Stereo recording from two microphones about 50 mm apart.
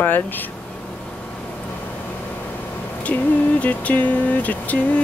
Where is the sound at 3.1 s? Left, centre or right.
Left.